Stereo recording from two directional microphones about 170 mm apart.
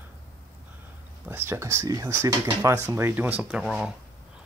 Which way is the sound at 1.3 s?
15° right (ahead or behind).